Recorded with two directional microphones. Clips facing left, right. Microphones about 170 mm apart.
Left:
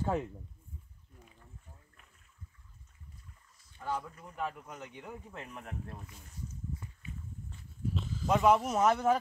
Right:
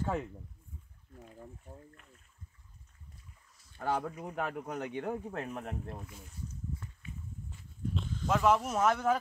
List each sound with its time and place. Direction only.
0.0 s speech: 15° left (ahead or behind)
3.7 s speech: 80° right; by 5.6 s 55° right (ahead or behind)
5.6 s speech: 35° right (ahead or behind)
7.9 s speech: centre (ahead or behind)